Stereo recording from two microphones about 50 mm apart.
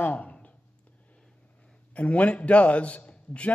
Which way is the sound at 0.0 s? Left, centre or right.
Left.